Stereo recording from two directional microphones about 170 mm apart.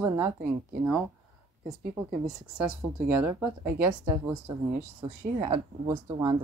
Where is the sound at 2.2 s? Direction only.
5° right (ahead or behind).